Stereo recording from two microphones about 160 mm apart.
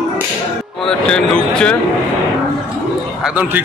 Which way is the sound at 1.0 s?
5° left (ahead or behind).